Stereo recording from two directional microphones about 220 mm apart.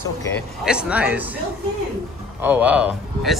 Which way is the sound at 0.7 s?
5° right (ahead or behind).